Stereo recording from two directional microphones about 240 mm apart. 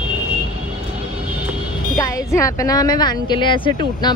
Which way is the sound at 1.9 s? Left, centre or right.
Centre.